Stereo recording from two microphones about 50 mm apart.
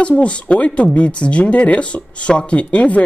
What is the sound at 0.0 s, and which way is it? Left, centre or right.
Speech, left.